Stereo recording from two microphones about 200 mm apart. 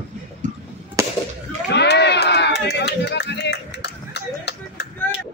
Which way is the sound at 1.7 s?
60° left (ahead or behind).